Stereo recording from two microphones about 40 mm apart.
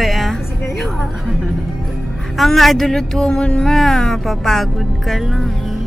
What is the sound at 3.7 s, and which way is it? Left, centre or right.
Speech, centre.